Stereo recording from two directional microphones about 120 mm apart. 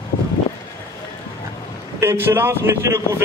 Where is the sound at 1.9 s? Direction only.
20° right (ahead or behind).